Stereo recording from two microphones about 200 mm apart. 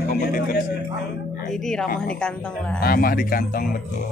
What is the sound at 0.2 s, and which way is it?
Music, 45° left (ahead or behind).